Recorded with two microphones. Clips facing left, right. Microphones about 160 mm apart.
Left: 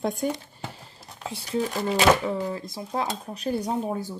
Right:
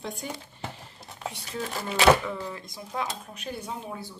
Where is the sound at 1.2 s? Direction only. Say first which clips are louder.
Left 1 dB; centre (ahead or behind).